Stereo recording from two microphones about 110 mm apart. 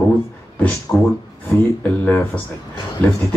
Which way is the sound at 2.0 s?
15° left (ahead or behind).